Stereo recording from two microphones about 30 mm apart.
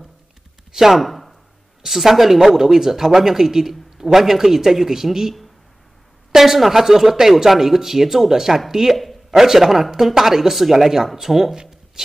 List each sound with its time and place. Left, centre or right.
0.7 s speech: centre
0.9 s a sound: centre
2.0 s a man's voice: centre
2.6 s a man's voice: centre
6.3 s a man's voice: centre
11.5 s a sound: right